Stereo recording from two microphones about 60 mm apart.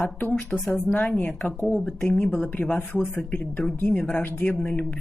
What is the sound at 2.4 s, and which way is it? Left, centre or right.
A woman's voice, left.